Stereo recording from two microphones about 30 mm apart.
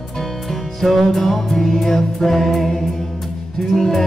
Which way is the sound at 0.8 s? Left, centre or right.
Centre.